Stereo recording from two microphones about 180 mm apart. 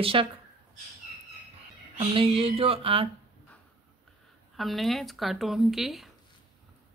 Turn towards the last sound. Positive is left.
turn(degrees=0)  # may be behind; listen again after turning